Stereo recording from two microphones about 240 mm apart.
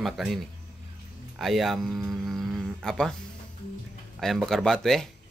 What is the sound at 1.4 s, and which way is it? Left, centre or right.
Speech, centre.